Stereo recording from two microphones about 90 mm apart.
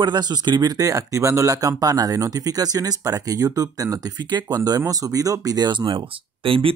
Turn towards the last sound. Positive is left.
turn(degrees=-80)